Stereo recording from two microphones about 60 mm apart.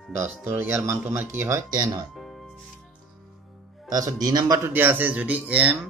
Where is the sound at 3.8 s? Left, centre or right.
Right.